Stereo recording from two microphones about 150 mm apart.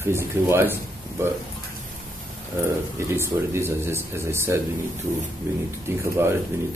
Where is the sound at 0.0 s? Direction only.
15° right (ahead or behind).